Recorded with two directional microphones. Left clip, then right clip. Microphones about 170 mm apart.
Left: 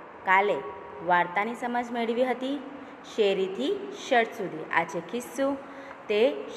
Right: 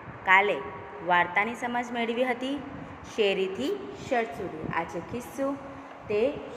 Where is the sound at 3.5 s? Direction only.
70° left (ahead or behind).